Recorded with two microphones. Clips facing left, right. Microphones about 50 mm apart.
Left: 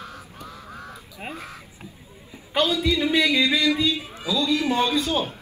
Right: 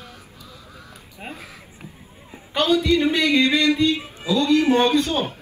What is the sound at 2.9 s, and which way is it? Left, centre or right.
A man's voice, right.